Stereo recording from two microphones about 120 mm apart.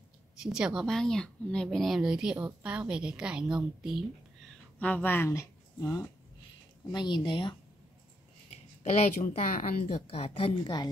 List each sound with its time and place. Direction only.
0.4 s speech: 5° right (ahead or behind)
4.5 s a sound: 10° left (ahead or behind); by 6.0 s 30° left (ahead or behind)
6.9 s speech: 40° left (ahead or behind)
8.9 s a woman's voice: 90° left
10.1 s a woman's voice: 55° left (ahead or behind)